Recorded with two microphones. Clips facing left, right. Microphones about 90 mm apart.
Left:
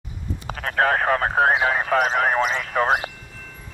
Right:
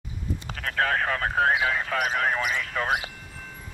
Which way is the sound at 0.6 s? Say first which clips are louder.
Left 5 dB; 35° left (ahead or behind).